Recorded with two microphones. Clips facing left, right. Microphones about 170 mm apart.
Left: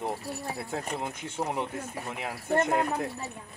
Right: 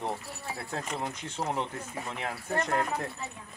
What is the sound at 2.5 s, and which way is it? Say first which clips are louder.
Speech: left 5 dB; 25° left (ahead or behind).